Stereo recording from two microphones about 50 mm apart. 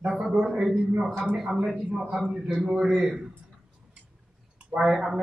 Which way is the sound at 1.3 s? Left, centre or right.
Centre.